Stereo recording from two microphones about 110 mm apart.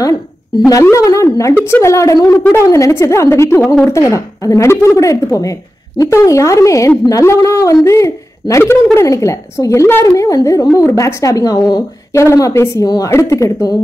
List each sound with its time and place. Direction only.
0.9 s a woman's voice: 30° left (ahead or behind)